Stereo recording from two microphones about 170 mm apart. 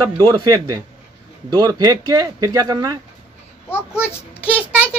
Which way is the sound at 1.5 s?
20° right (ahead or behind).